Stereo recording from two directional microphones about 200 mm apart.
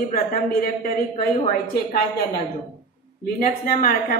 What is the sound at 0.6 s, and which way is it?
Speech, 45° left (ahead or behind).